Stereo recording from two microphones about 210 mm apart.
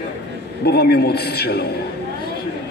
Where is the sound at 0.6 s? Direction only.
50° left (ahead or behind).